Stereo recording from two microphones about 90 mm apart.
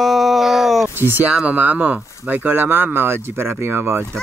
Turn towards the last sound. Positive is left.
turn(degrees=-25)  # may be behind; listen again after turning